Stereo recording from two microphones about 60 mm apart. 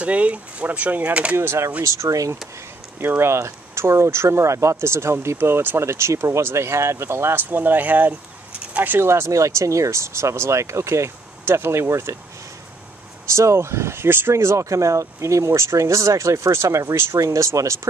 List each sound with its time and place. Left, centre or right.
0.0 s speech: right
1.3 s speech: right
1.8 s speech: right
3.2 s speech: right
5.9 s speech: right
7.4 s speech: right
9.0 s speech: right
13.3 s speech: right
14.3 s speech: right
17.2 s speech: right